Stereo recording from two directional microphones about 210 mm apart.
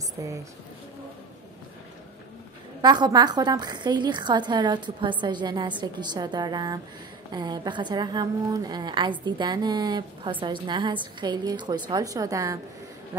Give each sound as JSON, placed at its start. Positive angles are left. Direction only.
{"t": 0.2, "sound": "speech", "side_deg": -15}
{"t": 2.8, "sound": "a woman's voice", "side_deg": -20}